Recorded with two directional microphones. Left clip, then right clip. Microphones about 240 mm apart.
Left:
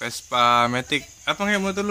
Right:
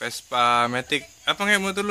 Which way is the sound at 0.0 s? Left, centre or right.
Centre.